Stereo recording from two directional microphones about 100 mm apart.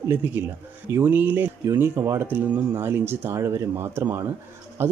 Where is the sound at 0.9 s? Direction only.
20° right (ahead or behind).